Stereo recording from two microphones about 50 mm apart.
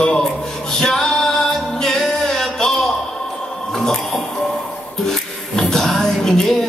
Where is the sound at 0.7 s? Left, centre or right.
Centre.